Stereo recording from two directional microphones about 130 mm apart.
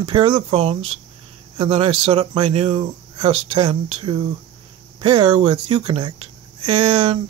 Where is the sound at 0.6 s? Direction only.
50° right (ahead or behind).